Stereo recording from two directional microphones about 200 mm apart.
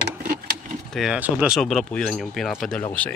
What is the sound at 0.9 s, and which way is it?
Speech, 5° right (ahead or behind).